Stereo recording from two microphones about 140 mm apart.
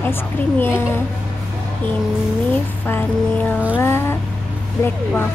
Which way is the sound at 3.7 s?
15° left (ahead or behind).